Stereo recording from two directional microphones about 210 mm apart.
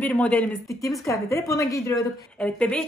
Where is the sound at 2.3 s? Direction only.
5° left (ahead or behind).